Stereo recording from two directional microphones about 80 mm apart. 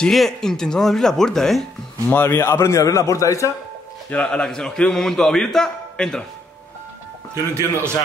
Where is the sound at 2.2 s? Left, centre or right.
Left.